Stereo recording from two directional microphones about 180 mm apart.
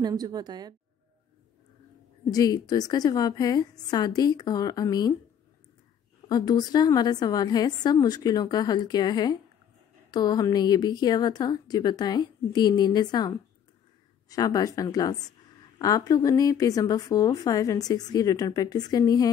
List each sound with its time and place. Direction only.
0.0 s a woman's voice: 20° right (ahead or behind)
2.3 s speech: 20° left (ahead or behind)
6.2 s speech: 20° left (ahead or behind)
14.3 s speech: 20° left (ahead or behind)